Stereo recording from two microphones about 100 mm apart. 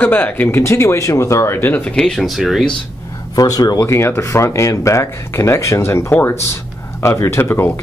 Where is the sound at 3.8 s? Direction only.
25° left (ahead or behind).